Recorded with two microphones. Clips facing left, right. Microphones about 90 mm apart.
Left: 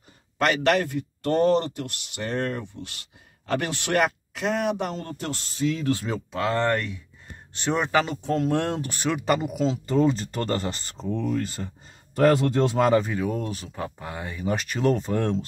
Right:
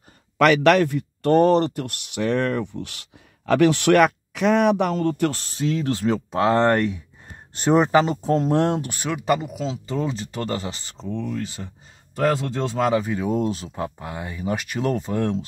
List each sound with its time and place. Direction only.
0.4 s speech: 65° right (ahead or behind)
6.0 s speech: 15° right (ahead or behind)
6.5 s speech: 50° right (ahead or behind)
7.5 s speech: 40° right (ahead or behind)
9.0 s speech: 10° right (ahead or behind)
9.4 s speech: centre (ahead or behind)
11.0 s speech: 10° left (ahead or behind)
11.6 s speech: 5° right (ahead or behind)
12.9 s speech: 15° right (ahead or behind)